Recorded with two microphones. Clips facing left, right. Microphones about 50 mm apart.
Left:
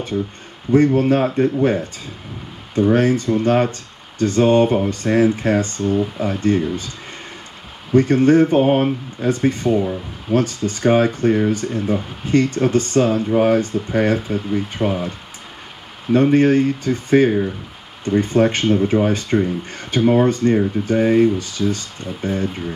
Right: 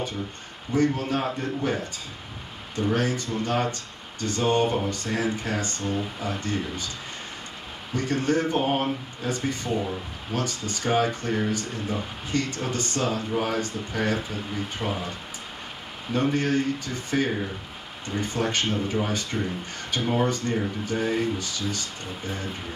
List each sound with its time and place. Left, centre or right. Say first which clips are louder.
0.7 s speech: left 10 dB; left
7.9 s speech: left 12 dB; left
16.1 s speech: left 11 dB; left